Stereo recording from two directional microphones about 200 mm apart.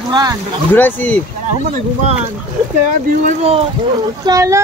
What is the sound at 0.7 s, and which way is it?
Speech, 10° left (ahead or behind).